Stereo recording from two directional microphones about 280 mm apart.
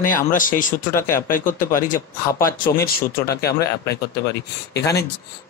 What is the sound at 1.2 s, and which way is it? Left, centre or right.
Speech, left.